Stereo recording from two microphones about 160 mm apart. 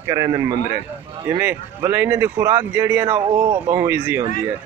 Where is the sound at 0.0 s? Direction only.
20° right (ahead or behind).